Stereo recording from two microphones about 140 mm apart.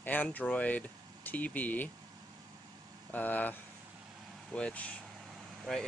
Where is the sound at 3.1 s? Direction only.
10° left (ahead or behind).